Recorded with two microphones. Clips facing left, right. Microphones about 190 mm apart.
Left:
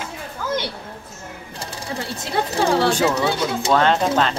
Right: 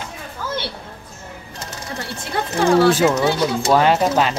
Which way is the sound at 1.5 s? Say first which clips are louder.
Left 2 dB; 30° left (ahead or behind).